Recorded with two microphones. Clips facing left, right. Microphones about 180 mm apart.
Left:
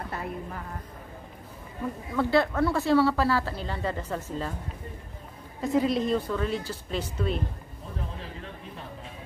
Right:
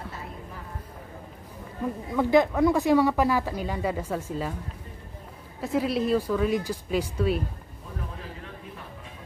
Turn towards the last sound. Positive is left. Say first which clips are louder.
# right 4 dB
turn(degrees=-10)  # may be behind; listen again after turning